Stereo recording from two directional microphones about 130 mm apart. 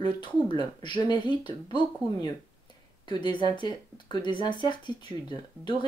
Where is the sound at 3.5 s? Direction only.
35° left (ahead or behind).